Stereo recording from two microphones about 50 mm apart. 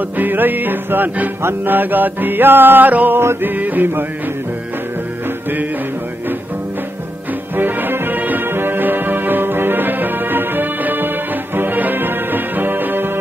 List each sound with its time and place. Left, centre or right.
0.2 s music: right
7.5 s music: right